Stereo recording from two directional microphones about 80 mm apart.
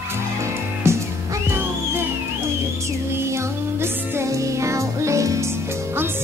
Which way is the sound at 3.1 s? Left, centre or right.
Right.